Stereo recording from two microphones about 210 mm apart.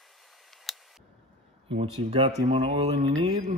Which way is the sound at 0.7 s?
Centre (ahead or behind).